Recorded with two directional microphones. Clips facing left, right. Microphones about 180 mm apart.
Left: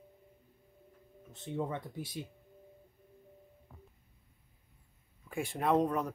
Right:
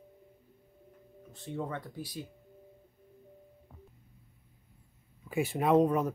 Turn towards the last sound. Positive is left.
turn(degrees=-5)  # may be behind; listen again after turning